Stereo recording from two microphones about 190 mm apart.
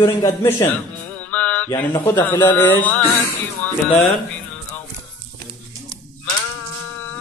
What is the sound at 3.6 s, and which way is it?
Music, 10° left (ahead or behind).